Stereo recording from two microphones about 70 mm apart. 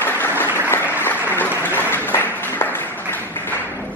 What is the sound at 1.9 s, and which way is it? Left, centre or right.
Applause, left.